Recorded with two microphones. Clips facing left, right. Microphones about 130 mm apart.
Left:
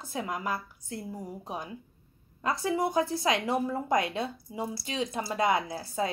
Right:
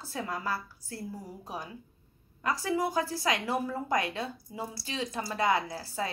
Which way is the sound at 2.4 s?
25° left (ahead or behind).